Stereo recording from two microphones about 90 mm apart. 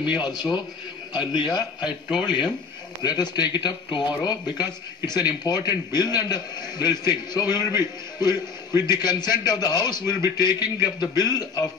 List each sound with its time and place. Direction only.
0.0 s a man's voice: 60° left (ahead or behind)
1.9 s speech: 10° right (ahead or behind)
3.0 s speech: 50° left (ahead or behind)